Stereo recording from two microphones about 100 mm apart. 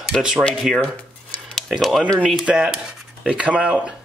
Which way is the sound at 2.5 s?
10° right (ahead or behind).